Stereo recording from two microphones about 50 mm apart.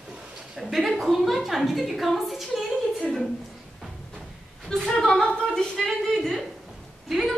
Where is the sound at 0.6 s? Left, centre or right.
Centre.